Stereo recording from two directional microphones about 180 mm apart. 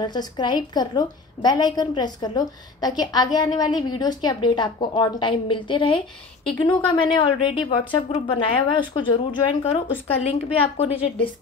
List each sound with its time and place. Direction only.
0.0 s a woman's voice: 25° left (ahead or behind)